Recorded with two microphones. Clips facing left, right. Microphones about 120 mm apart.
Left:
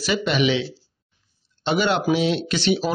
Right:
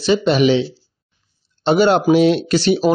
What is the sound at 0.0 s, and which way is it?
Speech, 30° right (ahead or behind).